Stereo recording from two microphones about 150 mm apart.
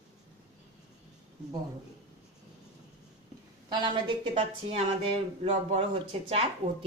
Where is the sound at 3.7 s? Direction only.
30° right (ahead or behind).